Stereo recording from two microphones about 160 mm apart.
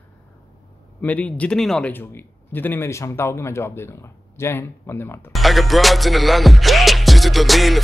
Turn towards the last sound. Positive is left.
turn(degrees=0)  # may be behind; listen again after turning